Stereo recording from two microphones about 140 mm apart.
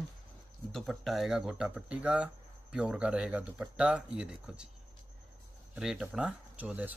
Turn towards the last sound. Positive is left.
turn(degrees=-10)  # may be behind; listen again after turning